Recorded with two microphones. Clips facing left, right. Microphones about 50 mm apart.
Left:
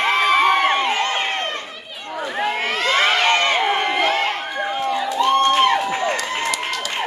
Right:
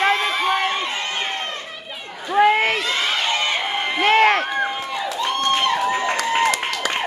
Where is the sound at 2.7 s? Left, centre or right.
Left.